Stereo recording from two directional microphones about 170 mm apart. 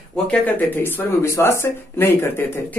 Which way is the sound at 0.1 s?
10° left (ahead or behind).